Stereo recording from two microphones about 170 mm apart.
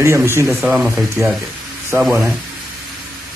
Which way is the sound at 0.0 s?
15° right (ahead or behind).